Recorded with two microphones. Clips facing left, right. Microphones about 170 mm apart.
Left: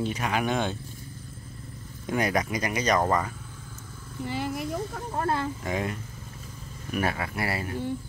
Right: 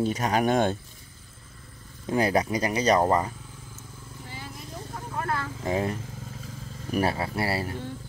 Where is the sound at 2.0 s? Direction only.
30° right (ahead or behind).